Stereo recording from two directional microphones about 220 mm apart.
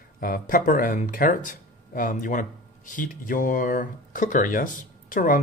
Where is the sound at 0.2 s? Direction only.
40° left (ahead or behind).